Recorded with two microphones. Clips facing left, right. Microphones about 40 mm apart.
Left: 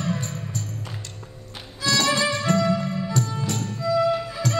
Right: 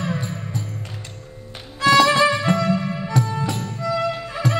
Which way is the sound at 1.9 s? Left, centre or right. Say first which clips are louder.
Right 7 dB; right.